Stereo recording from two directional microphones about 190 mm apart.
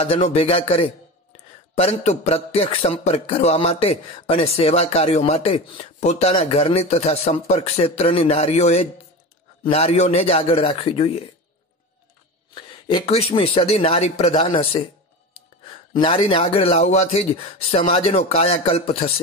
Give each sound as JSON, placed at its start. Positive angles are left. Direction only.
{"t": 0.0, "sound": "a man's voice", "side_deg": 30}
{"t": 12.5, "sound": "a man's voice", "side_deg": 25}